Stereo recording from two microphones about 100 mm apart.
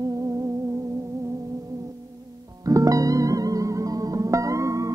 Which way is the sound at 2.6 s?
35° right (ahead or behind).